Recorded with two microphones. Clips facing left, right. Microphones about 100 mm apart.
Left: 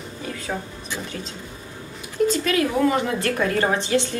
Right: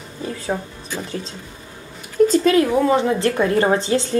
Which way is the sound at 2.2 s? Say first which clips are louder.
Right 6 dB; 35° right (ahead or behind).